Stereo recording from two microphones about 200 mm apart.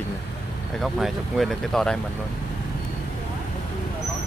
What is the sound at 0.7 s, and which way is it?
Speech, centre (ahead or behind).